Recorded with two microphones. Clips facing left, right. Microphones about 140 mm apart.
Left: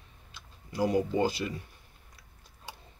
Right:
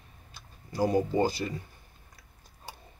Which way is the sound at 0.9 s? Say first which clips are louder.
Right 1 dB; 35° right (ahead or behind).